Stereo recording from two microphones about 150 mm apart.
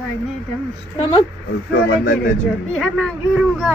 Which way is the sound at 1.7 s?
90° left.